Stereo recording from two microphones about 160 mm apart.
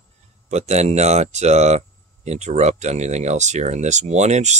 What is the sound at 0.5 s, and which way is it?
Speech, 45° right (ahead or behind).